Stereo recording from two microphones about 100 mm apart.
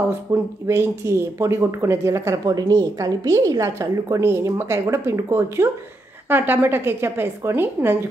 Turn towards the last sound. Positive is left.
turn(degrees=-20)  # may be behind; listen again after turning